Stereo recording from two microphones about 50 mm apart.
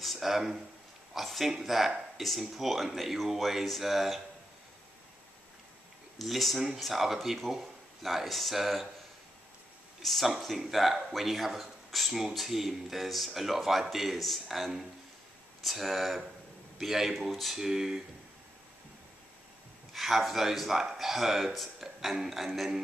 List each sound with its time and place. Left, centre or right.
0.0 s speech: centre
6.1 s speech: centre
10.0 s speech: centre
17.6 s speech: centre
19.9 s speech: centre